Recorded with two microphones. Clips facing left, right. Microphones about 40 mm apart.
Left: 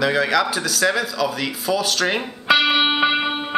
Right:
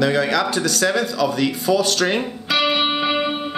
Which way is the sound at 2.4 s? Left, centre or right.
Centre.